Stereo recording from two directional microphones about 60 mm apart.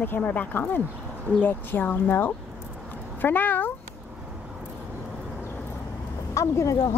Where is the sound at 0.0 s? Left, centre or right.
Left.